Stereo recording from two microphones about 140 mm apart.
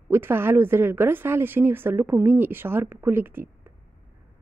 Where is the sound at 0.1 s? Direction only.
15° right (ahead or behind).